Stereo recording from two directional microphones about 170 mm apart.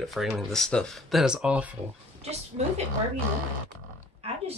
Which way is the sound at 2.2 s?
40° right (ahead or behind).